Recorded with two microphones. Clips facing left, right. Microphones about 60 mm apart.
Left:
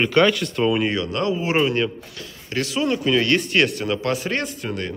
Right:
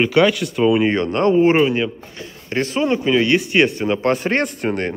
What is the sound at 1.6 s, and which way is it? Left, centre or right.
Speech, centre.